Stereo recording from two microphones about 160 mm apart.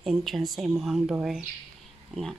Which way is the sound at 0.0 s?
Centre (ahead or behind).